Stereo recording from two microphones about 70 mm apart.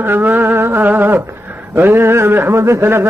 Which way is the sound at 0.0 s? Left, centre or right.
Right.